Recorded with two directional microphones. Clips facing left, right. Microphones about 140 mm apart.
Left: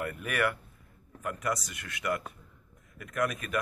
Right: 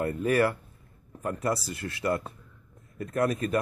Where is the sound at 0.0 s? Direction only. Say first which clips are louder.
Right 6 dB; 30° right (ahead or behind).